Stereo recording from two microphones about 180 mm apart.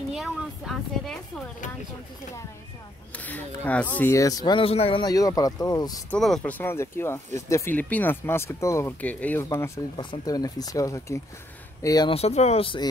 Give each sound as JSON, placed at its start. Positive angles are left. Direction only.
{"t": 0.1, "sound": "a woman's voice", "side_deg": 0}
{"t": 3.2, "sound": "speech", "side_deg": 10}
{"t": 6.0, "sound": "speech", "side_deg": 5}
{"t": 12.1, "sound": "speech", "side_deg": 35}